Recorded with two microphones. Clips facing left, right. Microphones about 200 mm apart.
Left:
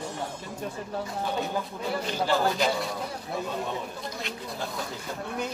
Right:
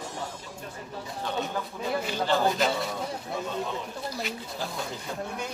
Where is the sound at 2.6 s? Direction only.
Centre (ahead or behind).